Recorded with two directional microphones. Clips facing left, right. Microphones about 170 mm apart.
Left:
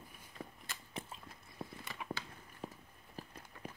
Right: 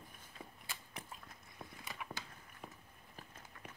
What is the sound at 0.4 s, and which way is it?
Mechanisms, centre (ahead or behind).